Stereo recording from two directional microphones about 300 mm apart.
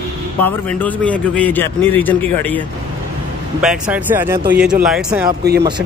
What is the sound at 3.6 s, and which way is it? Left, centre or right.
Speech, centre.